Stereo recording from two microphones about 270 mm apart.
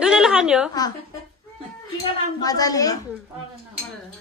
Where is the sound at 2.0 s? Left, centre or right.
Centre.